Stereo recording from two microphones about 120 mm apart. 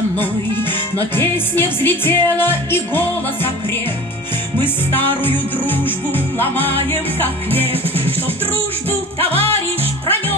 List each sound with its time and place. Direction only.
1.1 s music: 15° left (ahead or behind)
4.9 s music: 15° left (ahead or behind)